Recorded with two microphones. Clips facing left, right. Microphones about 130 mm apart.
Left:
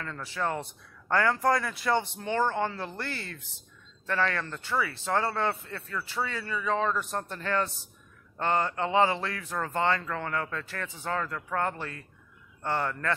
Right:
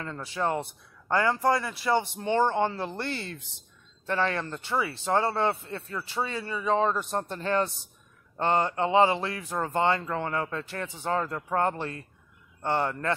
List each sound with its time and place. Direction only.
0.0 s speech: 20° right (ahead or behind)
1.4 s speech: 5° right (ahead or behind)
2.1 s speech: 20° right (ahead or behind)